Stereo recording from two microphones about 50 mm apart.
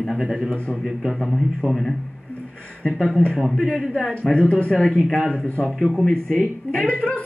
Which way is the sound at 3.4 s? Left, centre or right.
Centre.